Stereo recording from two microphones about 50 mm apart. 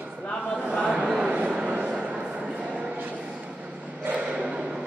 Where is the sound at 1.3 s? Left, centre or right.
Right.